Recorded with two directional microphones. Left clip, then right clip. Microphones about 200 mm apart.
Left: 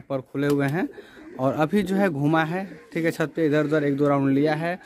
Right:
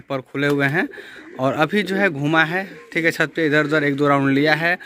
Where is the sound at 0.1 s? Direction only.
Centre (ahead or behind).